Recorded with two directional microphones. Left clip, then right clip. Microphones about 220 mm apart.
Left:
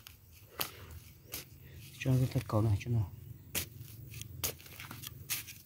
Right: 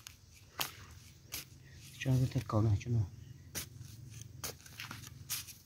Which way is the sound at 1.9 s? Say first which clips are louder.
Left 2 dB; 20° left (ahead or behind).